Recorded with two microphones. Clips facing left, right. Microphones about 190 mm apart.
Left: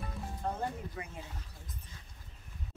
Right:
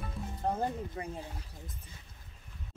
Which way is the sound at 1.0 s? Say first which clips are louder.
Right 4 dB; 30° right (ahead or behind).